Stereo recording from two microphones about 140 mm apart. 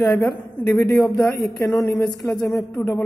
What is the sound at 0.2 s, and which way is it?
Speech, 10° left (ahead or behind).